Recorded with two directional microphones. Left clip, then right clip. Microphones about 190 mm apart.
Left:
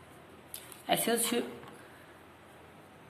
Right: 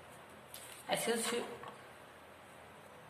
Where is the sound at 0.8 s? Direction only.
30° left (ahead or behind).